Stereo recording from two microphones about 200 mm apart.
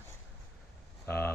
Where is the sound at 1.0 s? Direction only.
10° left (ahead or behind).